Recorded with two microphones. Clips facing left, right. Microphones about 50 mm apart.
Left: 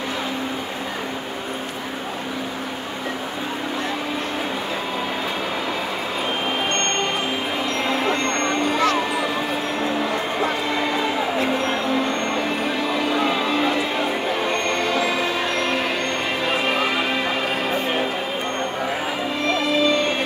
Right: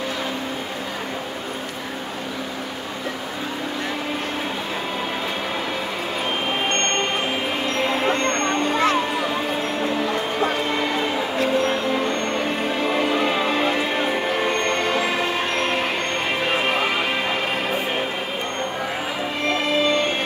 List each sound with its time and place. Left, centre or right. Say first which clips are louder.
14.7 s music: even; right
19.6 s music: left 1 dB; right